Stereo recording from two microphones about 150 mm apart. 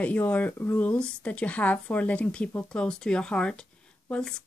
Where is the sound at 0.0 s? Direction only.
10° left (ahead or behind).